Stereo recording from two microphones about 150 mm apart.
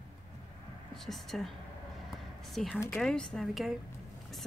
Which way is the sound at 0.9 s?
Centre (ahead or behind).